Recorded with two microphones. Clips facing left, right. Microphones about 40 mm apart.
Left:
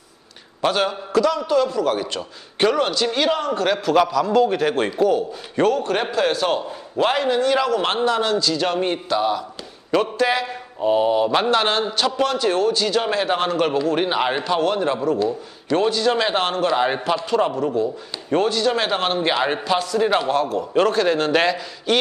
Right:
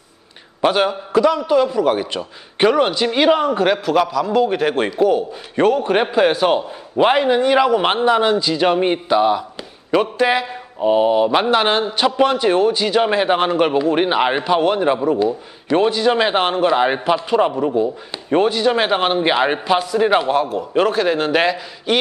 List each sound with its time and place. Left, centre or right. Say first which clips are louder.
0.6 s a man's voice: right 4 dB; centre